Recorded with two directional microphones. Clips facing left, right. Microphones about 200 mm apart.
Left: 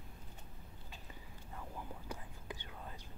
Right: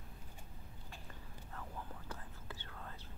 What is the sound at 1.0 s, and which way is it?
Whispering, 10° left (ahead or behind).